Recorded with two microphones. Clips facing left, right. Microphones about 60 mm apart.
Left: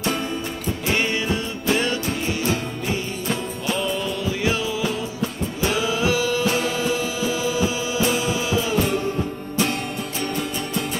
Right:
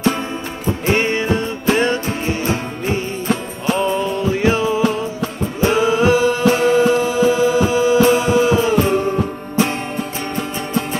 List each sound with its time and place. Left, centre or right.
0.7 s music: right
10.3 s music: right